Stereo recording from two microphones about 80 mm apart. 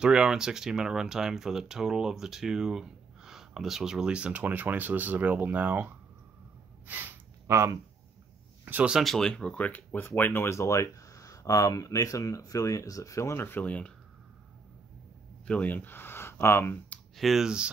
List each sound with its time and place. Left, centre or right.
0.0 s speech: centre
6.9 s gasp: right
7.4 s speech: right
8.7 s speech: right
9.0 s speech: centre
9.3 s speech: centre
15.4 s speech: centre
17.2 s speech: centre